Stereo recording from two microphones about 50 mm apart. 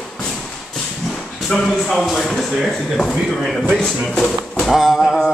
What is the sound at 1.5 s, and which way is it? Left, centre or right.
Speech, centre.